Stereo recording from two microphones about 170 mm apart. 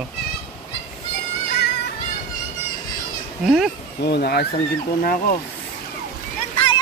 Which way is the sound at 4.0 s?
75° left (ahead or behind).